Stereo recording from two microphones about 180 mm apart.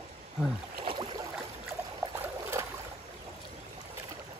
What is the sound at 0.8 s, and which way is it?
Boat, 25° right (ahead or behind).